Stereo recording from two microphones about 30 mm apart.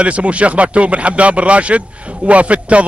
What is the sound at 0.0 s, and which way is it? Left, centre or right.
A man's voice, right.